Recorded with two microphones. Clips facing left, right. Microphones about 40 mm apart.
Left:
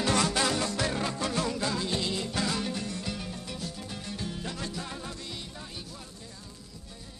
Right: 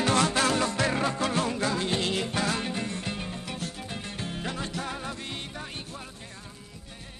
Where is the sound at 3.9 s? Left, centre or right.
Right.